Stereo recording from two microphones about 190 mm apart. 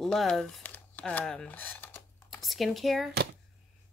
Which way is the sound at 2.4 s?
Centre (ahead or behind).